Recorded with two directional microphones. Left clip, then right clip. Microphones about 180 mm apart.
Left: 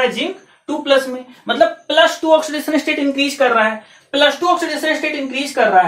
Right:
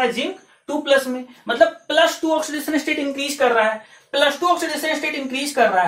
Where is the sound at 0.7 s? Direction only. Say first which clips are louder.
Left 3 dB; 15° left (ahead or behind).